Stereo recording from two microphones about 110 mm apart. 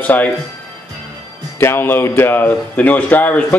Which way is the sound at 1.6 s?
20° left (ahead or behind).